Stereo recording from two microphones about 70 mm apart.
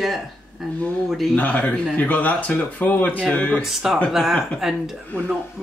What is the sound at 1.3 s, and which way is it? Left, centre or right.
Speech, left.